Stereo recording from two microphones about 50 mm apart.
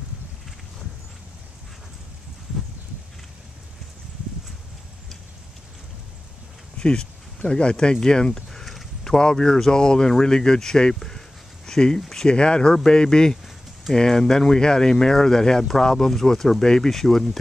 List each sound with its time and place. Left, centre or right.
6.8 s speech: centre